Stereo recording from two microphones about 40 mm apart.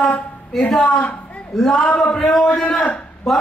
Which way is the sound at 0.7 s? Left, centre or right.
Centre.